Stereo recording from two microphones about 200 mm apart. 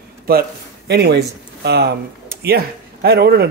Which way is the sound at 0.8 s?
55° right (ahead or behind).